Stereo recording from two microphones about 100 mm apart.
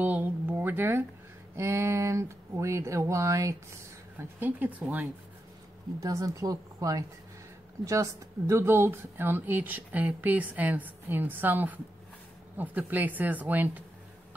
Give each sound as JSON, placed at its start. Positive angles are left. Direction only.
{"t": 0.0, "sound": "a sound", "side_deg": -15}
{"t": 1.6, "sound": "speech", "side_deg": -30}
{"t": 5.9, "sound": "speech", "side_deg": -35}